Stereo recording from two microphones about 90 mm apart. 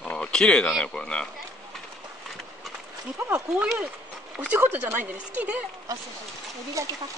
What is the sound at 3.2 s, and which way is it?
Speech, 20° right (ahead or behind).